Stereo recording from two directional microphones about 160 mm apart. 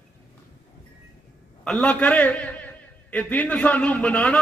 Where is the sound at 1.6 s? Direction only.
5° left (ahead or behind).